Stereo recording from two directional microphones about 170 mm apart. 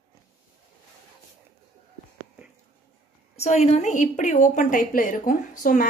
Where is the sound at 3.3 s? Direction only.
40° left (ahead or behind).